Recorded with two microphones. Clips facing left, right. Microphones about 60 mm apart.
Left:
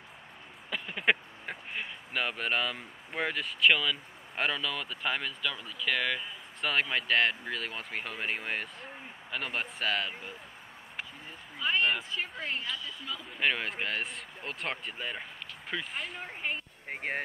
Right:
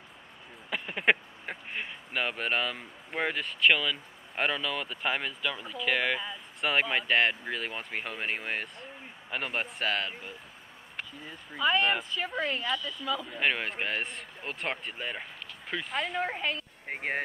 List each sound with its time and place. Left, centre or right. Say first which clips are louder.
0.7 s speech: right 2 dB; centre
12.4 s speech: right 5 dB; right
13.4 s speech: left 2 dB; centre
15.9 s speech: right 8 dB; right
16.8 s a sound: right 3 dB; centre